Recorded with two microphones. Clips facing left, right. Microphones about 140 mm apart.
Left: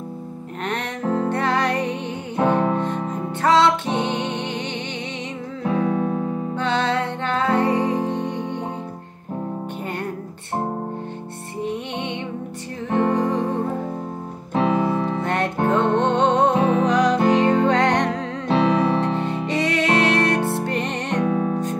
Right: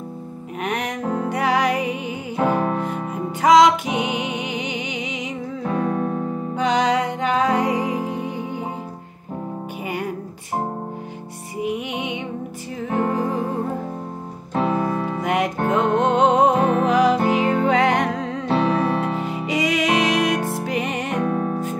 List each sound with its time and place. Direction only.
0.7 s music: 10° right (ahead or behind)
6.5 s music: 10° right (ahead or behind)
11.6 s music: 10° right (ahead or behind)
14.8 s music: 15° left (ahead or behind)
15.0 s music: 10° right (ahead or behind)